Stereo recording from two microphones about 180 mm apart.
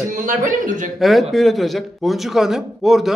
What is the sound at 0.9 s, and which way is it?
Speech, centre (ahead or behind).